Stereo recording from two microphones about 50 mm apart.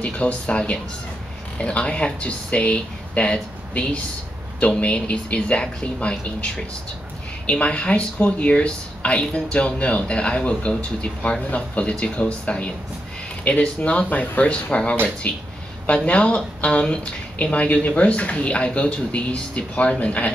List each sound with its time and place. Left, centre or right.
0.0 s speech: left